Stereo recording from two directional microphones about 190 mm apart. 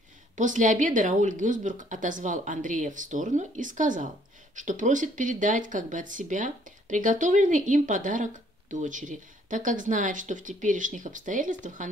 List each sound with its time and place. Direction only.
0.4 s speech: 40° right (ahead or behind)